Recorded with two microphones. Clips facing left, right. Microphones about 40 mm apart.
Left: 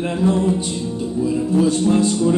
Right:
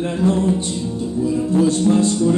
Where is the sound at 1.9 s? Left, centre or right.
Centre.